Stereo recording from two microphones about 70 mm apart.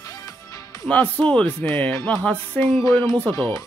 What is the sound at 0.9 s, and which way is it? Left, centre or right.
Speech, left.